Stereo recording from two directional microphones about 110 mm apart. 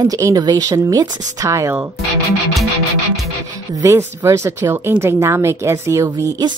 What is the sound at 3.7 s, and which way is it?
Speech, 30° right (ahead or behind).